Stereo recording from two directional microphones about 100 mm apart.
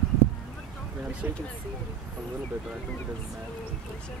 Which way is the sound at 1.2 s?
15° right (ahead or behind).